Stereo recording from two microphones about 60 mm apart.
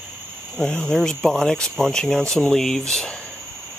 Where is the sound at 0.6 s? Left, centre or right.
Centre.